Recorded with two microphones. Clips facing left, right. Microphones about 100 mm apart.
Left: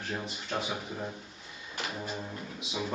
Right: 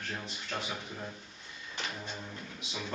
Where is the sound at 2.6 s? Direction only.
5° left (ahead or behind).